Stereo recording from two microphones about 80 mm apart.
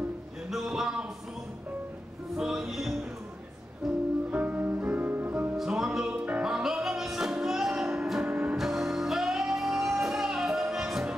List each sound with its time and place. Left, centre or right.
0.5 s a sound: centre
2.3 s music: centre
4.3 s music: centre
5.6 s music: centre
6.5 s music: centre